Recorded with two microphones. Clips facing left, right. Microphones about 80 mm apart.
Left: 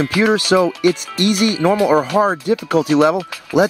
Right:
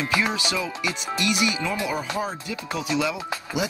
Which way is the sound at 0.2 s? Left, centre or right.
Left.